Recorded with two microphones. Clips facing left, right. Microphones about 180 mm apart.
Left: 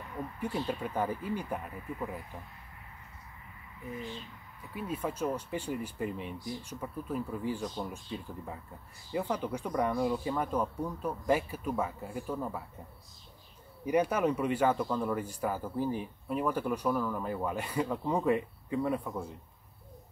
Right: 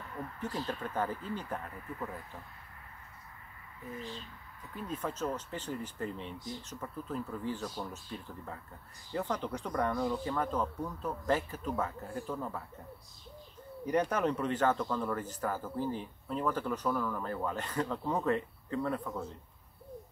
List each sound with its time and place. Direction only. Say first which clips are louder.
0.1 s speech: left 3 dB; 10° left (ahead or behind)
4.7 s speech: left 3 dB; 10° left (ahead or behind)
13.8 s speech: left 2 dB; 10° left (ahead or behind)